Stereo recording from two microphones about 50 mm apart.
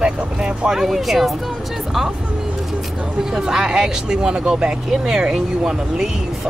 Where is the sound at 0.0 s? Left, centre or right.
Centre.